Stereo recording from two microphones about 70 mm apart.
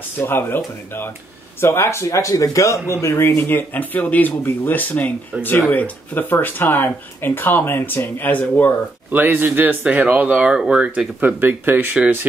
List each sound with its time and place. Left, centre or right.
0.2 s speech: left
9.1 s speech: right; by 11.1 s centre
11.1 s speech: right